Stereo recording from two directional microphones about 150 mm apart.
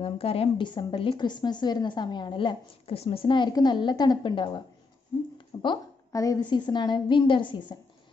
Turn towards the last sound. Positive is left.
turn(degrees=30)  # may be behind; listen again after turning